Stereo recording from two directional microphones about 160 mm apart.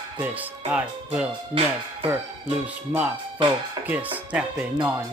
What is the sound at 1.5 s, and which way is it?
Speech, 35° right (ahead or behind).